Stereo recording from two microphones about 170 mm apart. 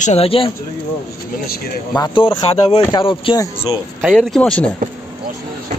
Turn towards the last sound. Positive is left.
turn(degrees=5)  # may be behind; listen again after turning